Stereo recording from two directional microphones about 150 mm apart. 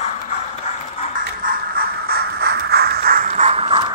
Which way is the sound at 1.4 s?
75° right (ahead or behind).